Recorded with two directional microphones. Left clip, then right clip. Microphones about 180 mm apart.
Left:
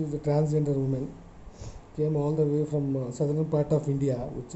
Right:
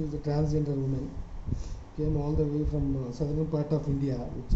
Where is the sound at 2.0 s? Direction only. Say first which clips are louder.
Left 4 dB; 65° left (ahead or behind).